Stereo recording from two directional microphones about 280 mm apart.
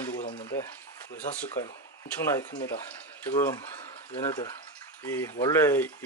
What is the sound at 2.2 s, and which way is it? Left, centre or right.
Speech, centre.